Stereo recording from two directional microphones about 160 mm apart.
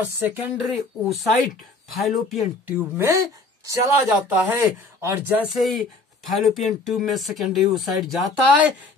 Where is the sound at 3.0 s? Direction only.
20° right (ahead or behind).